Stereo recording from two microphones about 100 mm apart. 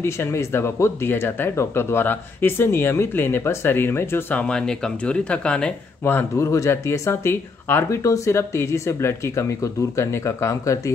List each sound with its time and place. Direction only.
0.0 s speech: 25° left (ahead or behind); by 5.8 s 10° left (ahead or behind)
6.0 s speech: 20° left (ahead or behind)
6.4 s speech: 35° left (ahead or behind)